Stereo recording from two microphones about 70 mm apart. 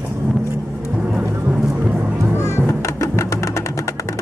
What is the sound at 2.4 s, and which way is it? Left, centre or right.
Music, left.